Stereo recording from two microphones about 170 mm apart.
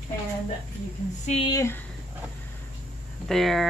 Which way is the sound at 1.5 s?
15° left (ahead or behind).